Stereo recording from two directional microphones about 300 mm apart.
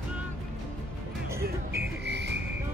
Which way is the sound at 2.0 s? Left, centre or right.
Right.